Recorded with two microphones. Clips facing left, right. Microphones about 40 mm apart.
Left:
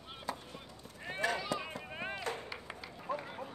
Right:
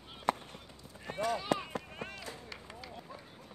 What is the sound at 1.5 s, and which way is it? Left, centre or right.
Chop, right.